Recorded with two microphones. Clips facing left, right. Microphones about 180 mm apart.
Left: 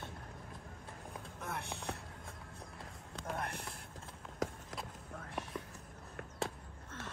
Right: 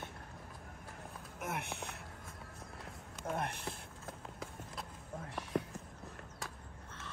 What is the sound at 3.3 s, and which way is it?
Speech, 25° right (ahead or behind).